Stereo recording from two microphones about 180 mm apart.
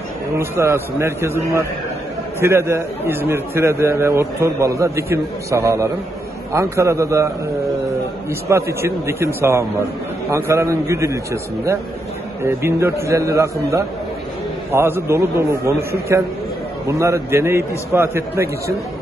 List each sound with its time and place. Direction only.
0.4 s a man's voice: 15° right (ahead or behind)
8.3 s a man's voice: 15° right (ahead or behind)
12.4 s a man's voice: 15° right (ahead or behind)